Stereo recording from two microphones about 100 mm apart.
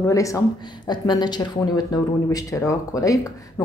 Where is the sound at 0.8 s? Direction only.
45° left (ahead or behind).